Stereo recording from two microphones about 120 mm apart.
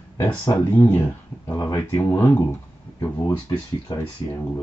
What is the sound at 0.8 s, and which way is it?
Speech, 25° left (ahead or behind).